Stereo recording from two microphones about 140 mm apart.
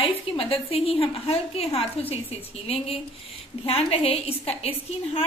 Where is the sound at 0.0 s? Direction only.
40° left (ahead or behind).